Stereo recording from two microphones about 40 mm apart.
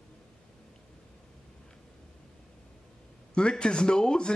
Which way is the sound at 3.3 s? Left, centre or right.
Left.